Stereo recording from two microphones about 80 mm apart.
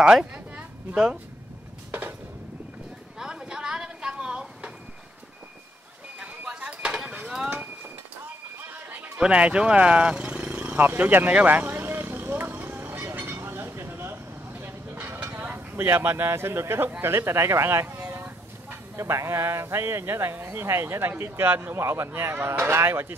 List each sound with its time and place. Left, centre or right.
0.0 s speech: centre
1.9 s a sound: right
3.2 s a sound: centre
6.1 s dishes: centre
8.5 s chatter: right
9.2 s vehicle: centre; by 16.9 s right
17.0 s speech: right